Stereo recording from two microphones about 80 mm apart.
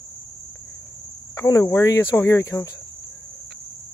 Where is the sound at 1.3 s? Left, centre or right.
Left.